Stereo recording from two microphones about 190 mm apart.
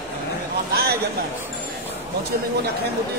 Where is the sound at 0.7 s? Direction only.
55° right (ahead or behind).